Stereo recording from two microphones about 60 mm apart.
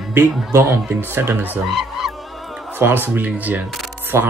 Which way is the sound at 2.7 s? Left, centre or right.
Right.